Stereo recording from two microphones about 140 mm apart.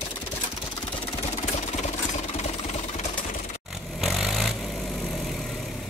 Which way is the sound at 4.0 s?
Centre (ahead or behind).